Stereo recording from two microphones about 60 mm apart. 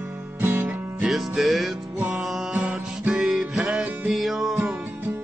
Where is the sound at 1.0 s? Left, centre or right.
Centre.